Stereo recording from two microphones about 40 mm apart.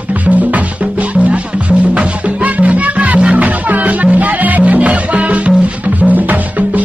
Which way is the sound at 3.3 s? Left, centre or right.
Right.